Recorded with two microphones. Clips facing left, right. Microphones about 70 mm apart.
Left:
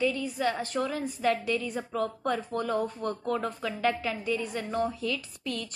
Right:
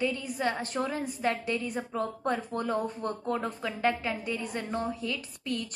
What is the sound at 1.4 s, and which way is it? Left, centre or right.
Speech, right.